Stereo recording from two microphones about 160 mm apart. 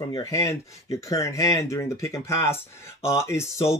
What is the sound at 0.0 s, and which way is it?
Speech, 20° left (ahead or behind).